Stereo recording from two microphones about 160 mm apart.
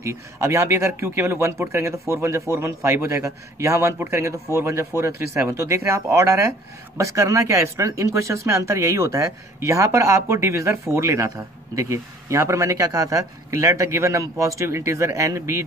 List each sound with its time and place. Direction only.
0.0 s speech: 15° right (ahead or behind)